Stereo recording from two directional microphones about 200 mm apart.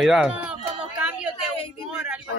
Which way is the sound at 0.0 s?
Centre (ahead or behind).